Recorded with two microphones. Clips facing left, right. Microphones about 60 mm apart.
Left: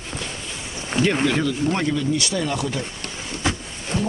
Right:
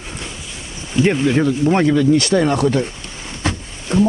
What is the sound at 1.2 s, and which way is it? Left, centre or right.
Speech, right.